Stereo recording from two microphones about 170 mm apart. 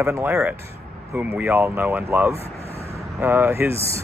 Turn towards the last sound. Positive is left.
turn(degrees=-10)  # may be behind; listen again after turning